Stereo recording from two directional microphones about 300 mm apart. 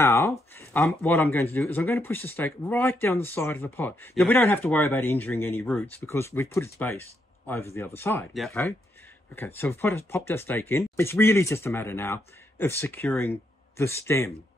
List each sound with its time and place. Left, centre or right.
0.0 s speech: centre